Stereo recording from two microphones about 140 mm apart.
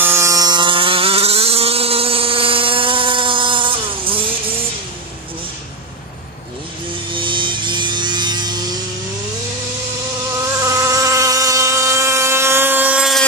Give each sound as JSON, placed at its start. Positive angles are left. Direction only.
{"t": 0.0, "sound": "a sound", "side_deg": -20}
{"t": 7.1, "sound": "music", "side_deg": -35}
{"t": 10.6, "sound": "motorboat", "side_deg": -25}